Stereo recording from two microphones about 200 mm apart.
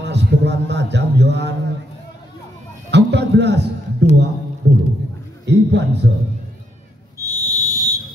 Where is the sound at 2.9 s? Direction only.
60° right (ahead or behind).